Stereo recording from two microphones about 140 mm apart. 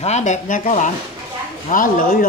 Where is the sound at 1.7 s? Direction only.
80° left.